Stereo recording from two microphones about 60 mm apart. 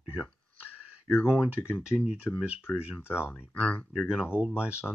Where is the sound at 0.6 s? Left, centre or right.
Left.